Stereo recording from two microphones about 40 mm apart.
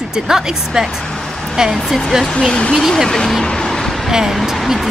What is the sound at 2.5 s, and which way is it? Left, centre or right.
Speech, left.